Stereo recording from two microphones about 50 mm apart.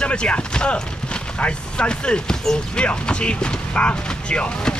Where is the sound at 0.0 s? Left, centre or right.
Centre.